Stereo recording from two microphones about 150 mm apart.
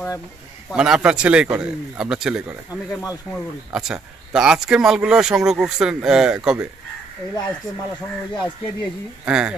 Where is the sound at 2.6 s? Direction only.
20° left (ahead or behind).